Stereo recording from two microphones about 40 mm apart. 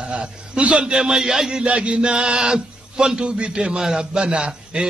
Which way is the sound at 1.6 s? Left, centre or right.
Right.